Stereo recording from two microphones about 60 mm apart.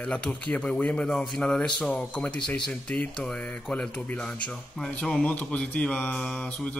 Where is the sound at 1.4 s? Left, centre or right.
Centre.